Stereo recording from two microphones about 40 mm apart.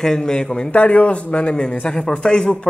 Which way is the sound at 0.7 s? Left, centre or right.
Left.